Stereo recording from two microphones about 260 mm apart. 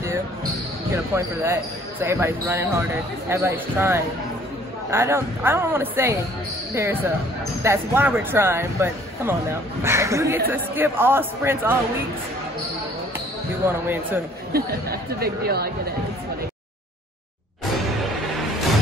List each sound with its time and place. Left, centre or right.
0.9 s speech: centre
13.7 s speech: centre
14.5 s speech: right